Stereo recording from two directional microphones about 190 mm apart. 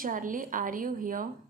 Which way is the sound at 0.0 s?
45° right (ahead or behind).